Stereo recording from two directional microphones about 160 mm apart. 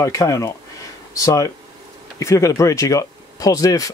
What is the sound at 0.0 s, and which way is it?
Speech, 20° left (ahead or behind).